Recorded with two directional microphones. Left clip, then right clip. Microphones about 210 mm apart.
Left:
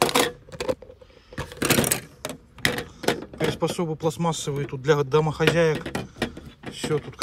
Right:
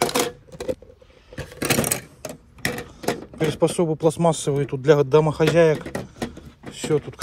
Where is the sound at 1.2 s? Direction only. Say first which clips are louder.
Even; 10° left (ahead or behind).